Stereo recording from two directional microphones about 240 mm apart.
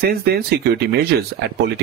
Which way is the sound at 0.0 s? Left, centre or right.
Right.